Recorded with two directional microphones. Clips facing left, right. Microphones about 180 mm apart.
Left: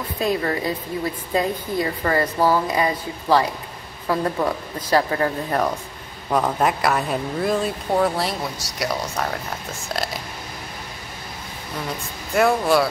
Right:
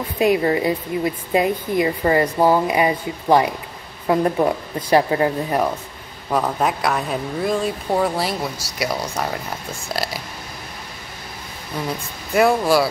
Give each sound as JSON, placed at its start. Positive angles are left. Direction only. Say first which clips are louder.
{"t": 0.2, "sound": "a woman's voice", "louder": "right 5 dB", "side_deg": -15}
{"t": 6.3, "sound": "a woman's voice", "louder": "even", "side_deg": 0}
{"t": 12.3, "sound": "speech", "louder": "right 2 dB", "side_deg": 0}